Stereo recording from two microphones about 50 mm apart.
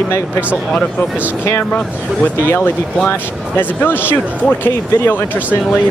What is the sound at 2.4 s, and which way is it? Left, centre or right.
Speech, left.